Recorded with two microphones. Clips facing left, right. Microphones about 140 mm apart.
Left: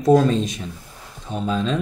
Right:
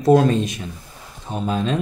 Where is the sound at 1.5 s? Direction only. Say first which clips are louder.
Even; 50° right (ahead or behind).